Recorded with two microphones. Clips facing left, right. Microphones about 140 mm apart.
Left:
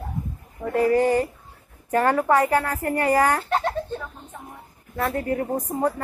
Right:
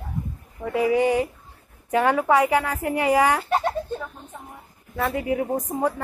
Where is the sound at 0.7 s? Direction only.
10° right (ahead or behind).